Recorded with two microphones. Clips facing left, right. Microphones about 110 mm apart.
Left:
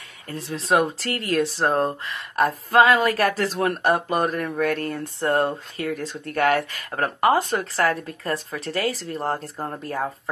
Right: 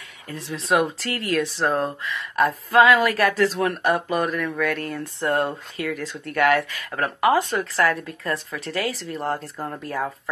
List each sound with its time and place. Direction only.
0.3 s speech: 40° left (ahead or behind)